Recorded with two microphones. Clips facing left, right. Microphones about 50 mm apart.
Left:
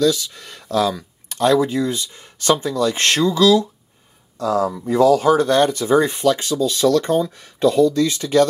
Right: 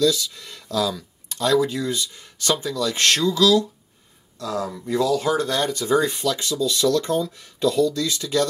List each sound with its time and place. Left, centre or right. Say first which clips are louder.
0.0 s speech: left 2 dB; left
4.8 s speech: left 7 dB; left
7.1 s speech: left 4 dB; left